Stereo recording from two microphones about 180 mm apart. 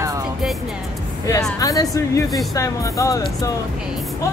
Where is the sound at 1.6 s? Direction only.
20° left (ahead or behind).